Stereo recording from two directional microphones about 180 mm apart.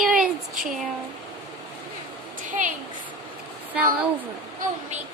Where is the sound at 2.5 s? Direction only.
45° right (ahead or behind).